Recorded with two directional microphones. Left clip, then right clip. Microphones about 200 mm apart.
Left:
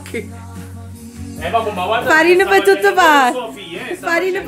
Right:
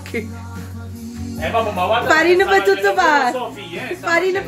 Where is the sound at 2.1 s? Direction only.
25° left (ahead or behind).